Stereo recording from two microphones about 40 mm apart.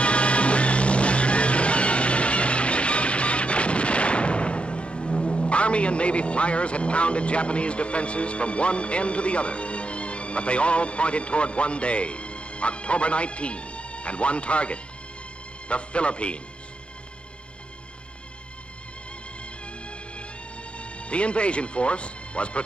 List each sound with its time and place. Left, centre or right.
0.0 s music: left
15.7 s speech: left
20.7 s speech: left